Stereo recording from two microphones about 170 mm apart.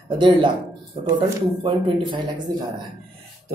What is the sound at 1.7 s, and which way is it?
Speech, 30° right (ahead or behind).